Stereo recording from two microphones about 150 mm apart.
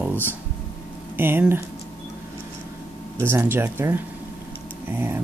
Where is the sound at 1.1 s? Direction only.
15° right (ahead or behind).